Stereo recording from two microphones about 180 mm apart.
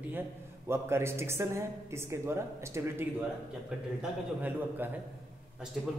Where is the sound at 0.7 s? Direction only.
15° right (ahead or behind).